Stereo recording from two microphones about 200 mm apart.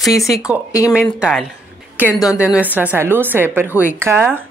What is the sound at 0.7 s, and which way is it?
Speech, 15° left (ahead or behind).